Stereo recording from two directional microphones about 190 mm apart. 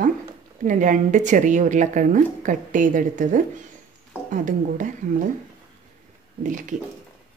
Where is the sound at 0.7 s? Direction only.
40° right (ahead or behind).